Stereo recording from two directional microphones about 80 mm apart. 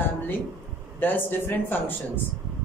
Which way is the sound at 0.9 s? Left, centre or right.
Left.